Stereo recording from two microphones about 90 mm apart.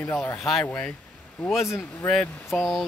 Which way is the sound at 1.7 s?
30° left (ahead or behind).